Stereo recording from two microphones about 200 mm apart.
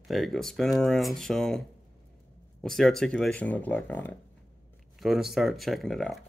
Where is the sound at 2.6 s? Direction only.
Centre (ahead or behind).